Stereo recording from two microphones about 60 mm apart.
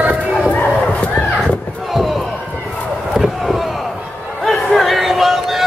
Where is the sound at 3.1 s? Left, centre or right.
Centre.